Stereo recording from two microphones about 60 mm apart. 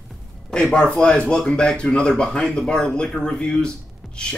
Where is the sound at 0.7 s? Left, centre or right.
Centre.